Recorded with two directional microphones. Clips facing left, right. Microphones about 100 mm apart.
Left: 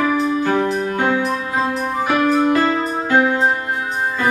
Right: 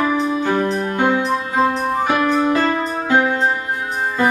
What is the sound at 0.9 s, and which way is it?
Music, 20° right (ahead or behind).